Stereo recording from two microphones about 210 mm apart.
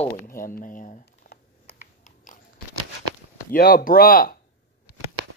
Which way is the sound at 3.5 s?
45° left (ahead or behind).